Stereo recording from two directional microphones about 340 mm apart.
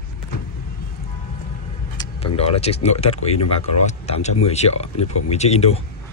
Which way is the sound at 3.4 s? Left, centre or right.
Left.